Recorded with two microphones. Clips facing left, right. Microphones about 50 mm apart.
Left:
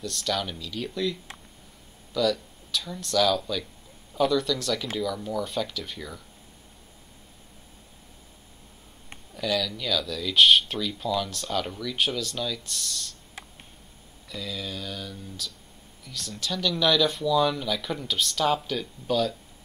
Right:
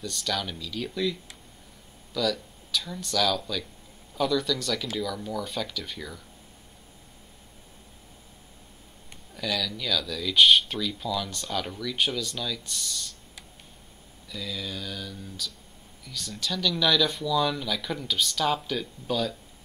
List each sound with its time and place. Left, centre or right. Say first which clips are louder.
0.0 s speech: left 2 dB; centre
2.1 s speech: left 3 dB; centre
9.3 s speech: left 3 dB; centre
14.3 s speech: left 1 dB; centre